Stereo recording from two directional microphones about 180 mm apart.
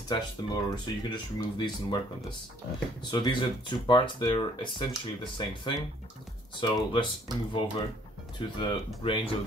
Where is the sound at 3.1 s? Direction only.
25° left (ahead or behind).